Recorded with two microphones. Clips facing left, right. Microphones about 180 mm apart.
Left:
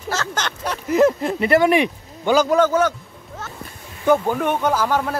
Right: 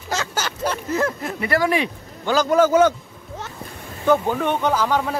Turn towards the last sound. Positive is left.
turn(degrees=10)  # may be behind; listen again after turning